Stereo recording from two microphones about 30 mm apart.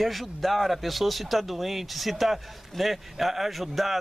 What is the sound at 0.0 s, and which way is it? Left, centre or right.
Speech, centre.